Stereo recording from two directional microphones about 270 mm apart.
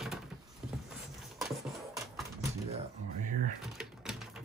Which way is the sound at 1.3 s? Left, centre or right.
Centre.